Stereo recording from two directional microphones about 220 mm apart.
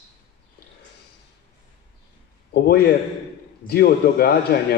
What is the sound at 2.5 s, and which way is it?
A man's voice, 45° left (ahead or behind).